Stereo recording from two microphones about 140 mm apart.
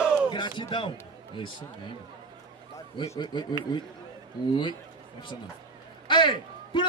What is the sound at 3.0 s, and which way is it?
Speech, 30° left (ahead or behind).